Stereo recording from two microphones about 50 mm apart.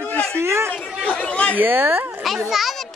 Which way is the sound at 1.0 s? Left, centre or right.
Left.